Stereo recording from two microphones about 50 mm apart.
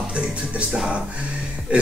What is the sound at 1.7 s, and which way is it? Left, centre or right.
Speech, right.